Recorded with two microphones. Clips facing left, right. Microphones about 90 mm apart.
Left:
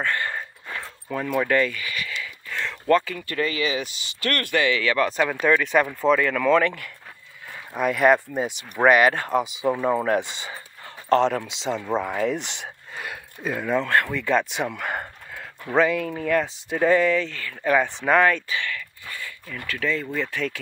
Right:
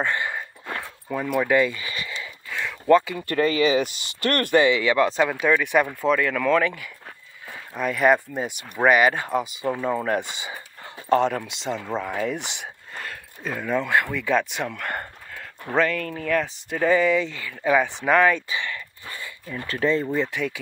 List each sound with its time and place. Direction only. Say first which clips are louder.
0.0 s speech: right 1 dB; 15° right (ahead or behind)
1.0 s speech: even; 5° right (ahead or behind)
1.7 s a sound: left 1 dB; 25° right (ahead or behind)
2.5 s a sound: right 3 dB; 10° right (ahead or behind)
3.3 s speech: right 5 dB; 35° right (ahead or behind)
3.8 s speech: right 4 dB; 50° right (ahead or behind)
4.3 s speech: right 4 dB; 40° right (ahead or behind)
4.6 s speech: right 3 dB; 20° right (ahead or behind); by 18.4 s centre (ahead or behind)
18.5 s speech: left 1 dB; 20° right (ahead or behind)
20.2 s speech: right 2 dB; 15° right (ahead or behind)